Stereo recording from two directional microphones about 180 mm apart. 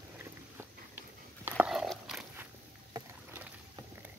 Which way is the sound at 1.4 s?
5° right (ahead or behind).